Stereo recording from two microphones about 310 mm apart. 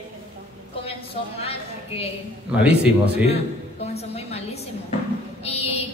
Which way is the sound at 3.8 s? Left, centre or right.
Centre.